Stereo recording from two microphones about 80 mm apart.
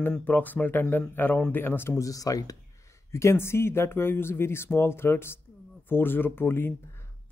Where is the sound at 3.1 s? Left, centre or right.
Left.